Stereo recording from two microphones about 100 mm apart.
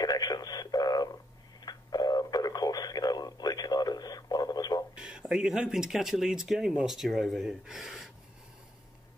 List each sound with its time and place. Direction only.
0.0 s radio: 40° left (ahead or behind)
4.9 s a sound: 10° right (ahead or behind)
5.2 s speech: 5° right (ahead or behind)